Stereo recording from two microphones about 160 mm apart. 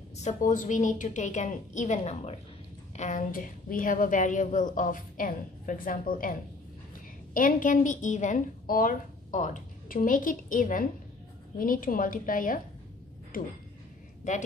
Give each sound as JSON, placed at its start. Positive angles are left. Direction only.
{"t": 0.2, "sound": "a woman's voice", "side_deg": 50}
{"t": 7.3, "sound": "a woman's voice", "side_deg": 55}